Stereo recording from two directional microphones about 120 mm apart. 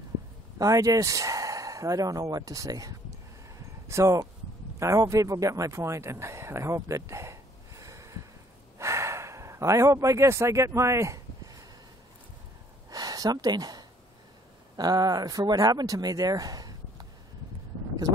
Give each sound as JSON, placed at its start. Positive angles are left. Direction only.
{"t": 0.6, "sound": "a man's voice", "side_deg": -30}
{"t": 8.7, "sound": "gasp", "side_deg": -25}
{"t": 12.9, "sound": "a sound", "side_deg": -30}
{"t": 14.8, "sound": "speech", "side_deg": -35}